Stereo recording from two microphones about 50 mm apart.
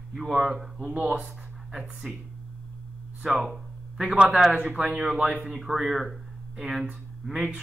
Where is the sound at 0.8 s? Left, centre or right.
Right.